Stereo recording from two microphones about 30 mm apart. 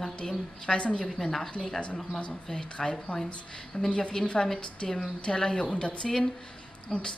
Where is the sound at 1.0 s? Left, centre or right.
Centre.